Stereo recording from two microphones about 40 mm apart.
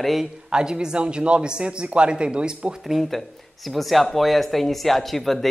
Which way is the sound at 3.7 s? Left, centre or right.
Centre.